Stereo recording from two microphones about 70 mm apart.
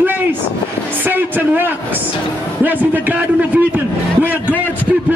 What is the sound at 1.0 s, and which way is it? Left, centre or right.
A man's voice, right.